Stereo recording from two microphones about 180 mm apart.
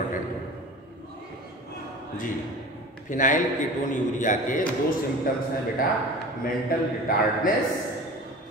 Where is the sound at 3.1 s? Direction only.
45° left (ahead or behind).